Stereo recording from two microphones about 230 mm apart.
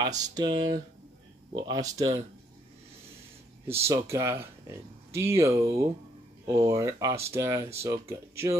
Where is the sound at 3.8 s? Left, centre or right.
Centre.